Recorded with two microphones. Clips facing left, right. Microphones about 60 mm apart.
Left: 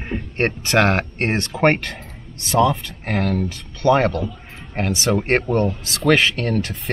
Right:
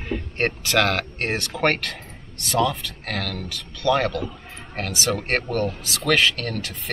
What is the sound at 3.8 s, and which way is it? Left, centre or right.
Speech, left.